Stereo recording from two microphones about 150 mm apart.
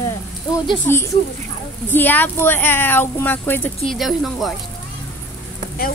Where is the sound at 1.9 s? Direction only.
10° left (ahead or behind).